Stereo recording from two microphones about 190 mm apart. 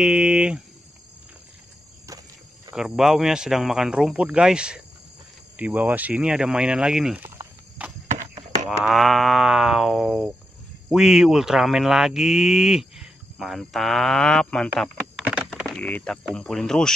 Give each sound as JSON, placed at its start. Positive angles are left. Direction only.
{"t": 0.0, "sound": "speech", "side_deg": -5}
{"t": 2.7, "sound": "speech", "side_deg": 0}
{"t": 8.1, "sound": "a sound", "side_deg": -40}
{"t": 8.6, "sound": "speech", "side_deg": 0}
{"t": 15.2, "sound": "a sound", "side_deg": -5}
{"t": 15.7, "sound": "speech", "side_deg": 5}